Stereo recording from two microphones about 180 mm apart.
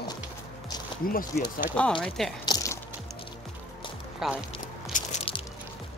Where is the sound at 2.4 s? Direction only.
20° left (ahead or behind).